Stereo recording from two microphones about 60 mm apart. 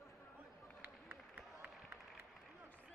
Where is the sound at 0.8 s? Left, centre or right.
Right.